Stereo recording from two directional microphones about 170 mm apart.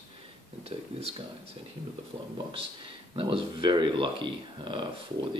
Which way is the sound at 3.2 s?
30° right (ahead or behind).